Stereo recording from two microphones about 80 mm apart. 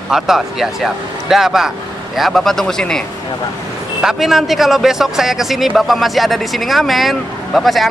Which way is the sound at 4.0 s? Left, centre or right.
Centre.